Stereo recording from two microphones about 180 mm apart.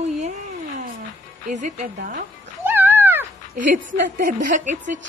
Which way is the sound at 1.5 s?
45° right (ahead or behind).